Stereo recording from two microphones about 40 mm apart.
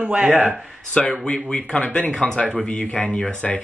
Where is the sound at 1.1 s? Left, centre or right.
Left.